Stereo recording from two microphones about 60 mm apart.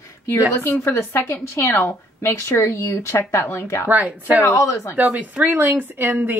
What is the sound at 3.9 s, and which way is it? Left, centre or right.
Speech, right.